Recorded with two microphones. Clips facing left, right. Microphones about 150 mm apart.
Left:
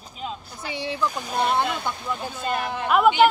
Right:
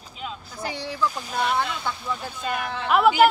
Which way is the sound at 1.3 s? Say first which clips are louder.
Left 4 dB; 35° left (ahead or behind).